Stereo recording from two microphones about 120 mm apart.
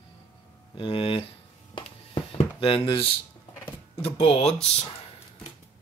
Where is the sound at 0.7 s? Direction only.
50° left (ahead or behind).